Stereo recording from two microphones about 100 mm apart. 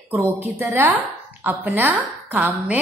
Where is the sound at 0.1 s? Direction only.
20° right (ahead or behind).